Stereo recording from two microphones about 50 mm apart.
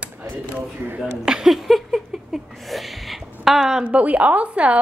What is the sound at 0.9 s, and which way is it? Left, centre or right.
Speech, centre.